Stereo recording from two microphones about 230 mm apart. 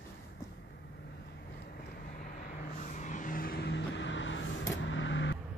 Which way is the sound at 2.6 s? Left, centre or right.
Left.